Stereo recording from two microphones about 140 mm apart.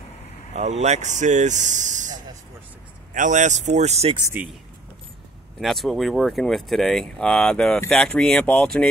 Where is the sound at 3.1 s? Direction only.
65° right (ahead or behind).